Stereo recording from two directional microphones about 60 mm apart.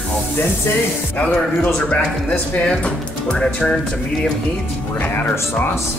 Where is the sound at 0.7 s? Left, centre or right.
Left.